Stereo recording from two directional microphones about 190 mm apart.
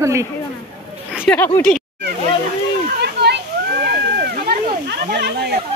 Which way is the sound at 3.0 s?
60° right (ahead or behind).